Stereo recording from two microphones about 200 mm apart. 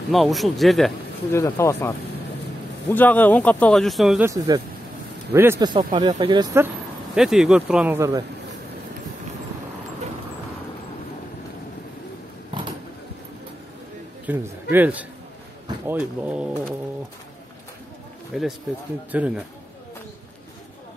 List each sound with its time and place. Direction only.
0.1 s speech: centre (ahead or behind)
1.3 s speech: 15° left (ahead or behind)
5.3 s speech: 15° right (ahead or behind)
7.2 s speech: centre (ahead or behind)
12.5 s a sound: 25° right (ahead or behind)
14.2 s speech: 10° right (ahead or behind)
18.3 s speech: centre (ahead or behind)